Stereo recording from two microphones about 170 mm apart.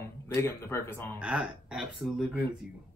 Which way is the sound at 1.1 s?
5° right (ahead or behind).